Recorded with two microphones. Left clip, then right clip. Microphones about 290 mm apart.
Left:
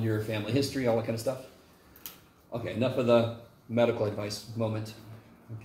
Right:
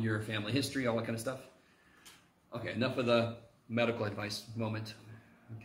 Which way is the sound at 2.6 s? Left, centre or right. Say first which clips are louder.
Left 5 dB; right.